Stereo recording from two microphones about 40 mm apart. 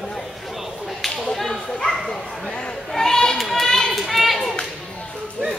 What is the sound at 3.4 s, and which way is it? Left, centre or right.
Children playing, centre.